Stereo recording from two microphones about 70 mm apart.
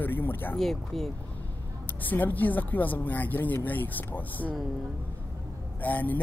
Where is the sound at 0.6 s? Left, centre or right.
Centre.